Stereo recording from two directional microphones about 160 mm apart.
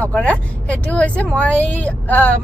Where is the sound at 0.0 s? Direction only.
5° left (ahead or behind).